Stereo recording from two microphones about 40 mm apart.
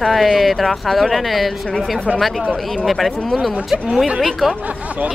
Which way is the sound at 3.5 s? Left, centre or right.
Centre.